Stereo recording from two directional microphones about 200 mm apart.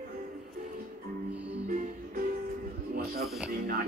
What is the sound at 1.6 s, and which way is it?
Music, 40° right (ahead or behind).